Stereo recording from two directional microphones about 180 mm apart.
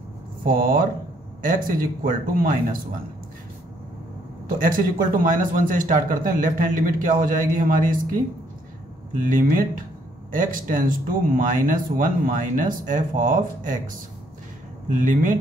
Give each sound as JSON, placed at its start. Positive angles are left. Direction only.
{"t": 0.4, "sound": "speech", "side_deg": -50}
{"t": 4.6, "sound": "speech", "side_deg": -50}
{"t": 9.2, "sound": "speech", "side_deg": -50}